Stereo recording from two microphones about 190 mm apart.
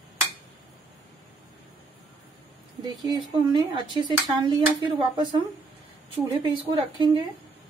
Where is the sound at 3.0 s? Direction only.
25° right (ahead or behind).